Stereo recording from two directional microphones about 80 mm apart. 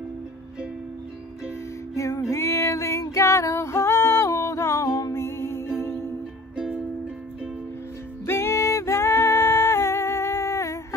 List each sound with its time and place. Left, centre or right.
2.0 s music: left
6.5 s music: centre
8.3 s music: left